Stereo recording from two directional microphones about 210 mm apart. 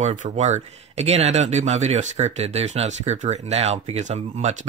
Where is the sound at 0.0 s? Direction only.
35° right (ahead or behind).